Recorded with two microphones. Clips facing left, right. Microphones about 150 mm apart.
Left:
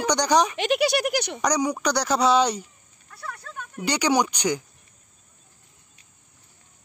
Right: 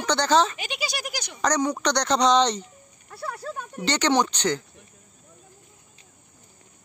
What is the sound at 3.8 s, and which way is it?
Speech, 10° left (ahead or behind).